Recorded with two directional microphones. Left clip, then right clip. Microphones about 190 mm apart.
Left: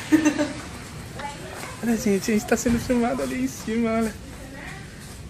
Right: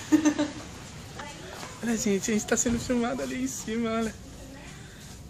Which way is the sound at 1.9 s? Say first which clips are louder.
Left 4 dB; 5° left (ahead or behind).